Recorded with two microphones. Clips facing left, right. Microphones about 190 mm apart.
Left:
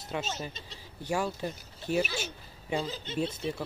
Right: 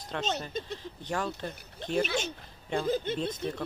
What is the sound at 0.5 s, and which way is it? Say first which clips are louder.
Speech: right 11 dB; 50° right (ahead or behind).